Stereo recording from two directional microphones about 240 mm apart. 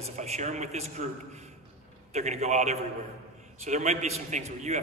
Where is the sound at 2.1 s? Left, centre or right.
Right.